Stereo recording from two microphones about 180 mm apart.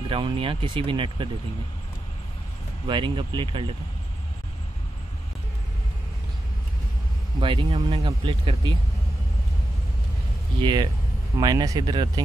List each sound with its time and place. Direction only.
0.1 s speech: 30° right (ahead or behind)
2.9 s speech: 25° right (ahead or behind)
7.3 s speech: 25° right (ahead or behind)
10.6 s speech: 25° right (ahead or behind)